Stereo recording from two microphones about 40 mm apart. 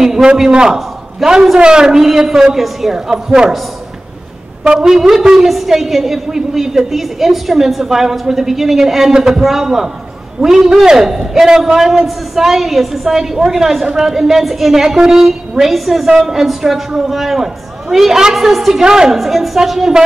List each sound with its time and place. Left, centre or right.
0.0 s a sound: centre
0.5 s a man's voice: right
4.6 s a woman's voice: centre
18.9 s a woman's voice: centre
19.1 s a woman's voice: centre